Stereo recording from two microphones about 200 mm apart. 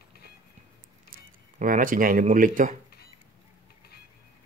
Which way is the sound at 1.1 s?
45° right (ahead or behind).